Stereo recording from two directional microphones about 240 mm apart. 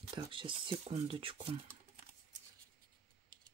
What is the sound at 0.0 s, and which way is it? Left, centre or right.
Speech, right.